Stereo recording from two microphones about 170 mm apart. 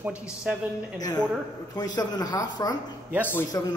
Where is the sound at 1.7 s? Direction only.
25° left (ahead or behind).